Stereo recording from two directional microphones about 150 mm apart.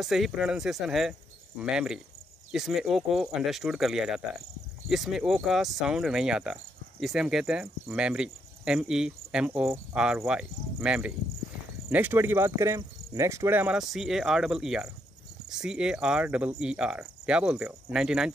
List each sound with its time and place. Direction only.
0.0 s speech: 5° right (ahead or behind)